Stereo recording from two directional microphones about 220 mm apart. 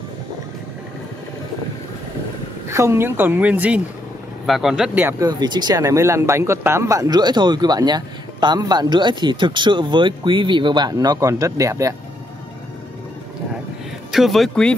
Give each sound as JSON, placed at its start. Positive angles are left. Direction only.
{"t": 2.7, "sound": "speech", "side_deg": -10}
{"t": 14.1, "sound": "speech", "side_deg": 0}